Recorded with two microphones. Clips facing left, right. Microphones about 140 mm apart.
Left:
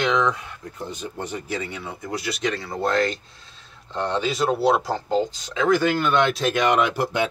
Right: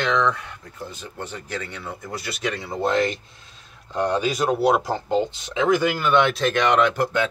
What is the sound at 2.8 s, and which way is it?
Speech, 20° right (ahead or behind).